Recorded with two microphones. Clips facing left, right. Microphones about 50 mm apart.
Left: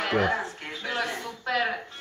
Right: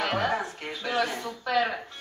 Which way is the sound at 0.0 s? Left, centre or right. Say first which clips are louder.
Left 2 dB; left.